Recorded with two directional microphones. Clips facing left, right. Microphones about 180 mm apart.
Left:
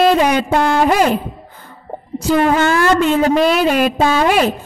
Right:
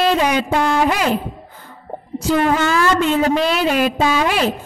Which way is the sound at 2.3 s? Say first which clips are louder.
Left 3 dB; 55° left (ahead or behind).